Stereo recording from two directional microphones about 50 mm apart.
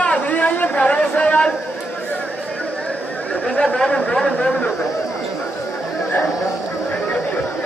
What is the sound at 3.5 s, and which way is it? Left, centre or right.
Speech, centre.